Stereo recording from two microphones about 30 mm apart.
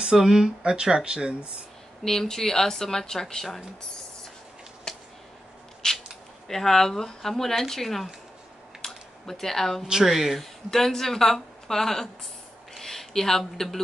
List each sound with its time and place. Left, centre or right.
0.0 s speech: right
2.0 s speech: centre
4.9 s a sound: left
6.4 s speech: centre
8.8 s a sound: centre
10.0 s a woman's voice: centre
10.4 s speech: centre